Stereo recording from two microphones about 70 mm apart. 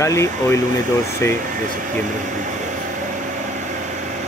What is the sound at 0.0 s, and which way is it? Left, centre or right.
Speech, left.